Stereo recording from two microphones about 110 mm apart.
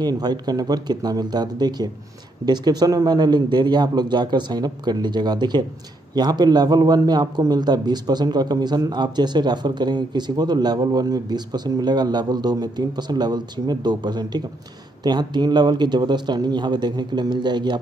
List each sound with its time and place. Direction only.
0.0 s a man's voice: 40° right (ahead or behind)